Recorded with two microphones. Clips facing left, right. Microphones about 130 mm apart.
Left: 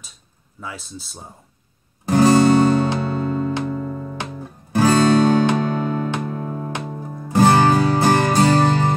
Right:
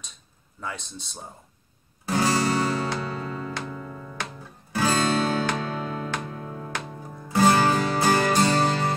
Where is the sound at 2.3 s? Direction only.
25° left (ahead or behind).